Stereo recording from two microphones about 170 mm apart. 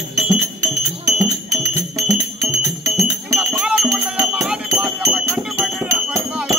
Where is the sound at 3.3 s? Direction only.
5° right (ahead or behind).